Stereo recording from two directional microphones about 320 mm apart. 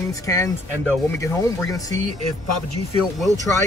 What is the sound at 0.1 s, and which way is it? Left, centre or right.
Speech, centre.